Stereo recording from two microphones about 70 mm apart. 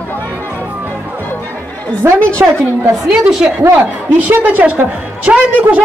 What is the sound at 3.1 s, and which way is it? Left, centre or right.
Speech, centre.